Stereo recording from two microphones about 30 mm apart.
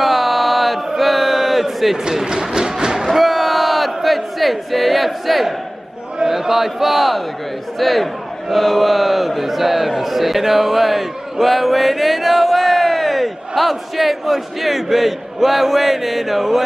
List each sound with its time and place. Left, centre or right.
0.0 s chant: centre
2.2 s music: right
3.2 s crowd: centre
6.2 s a man's voice: centre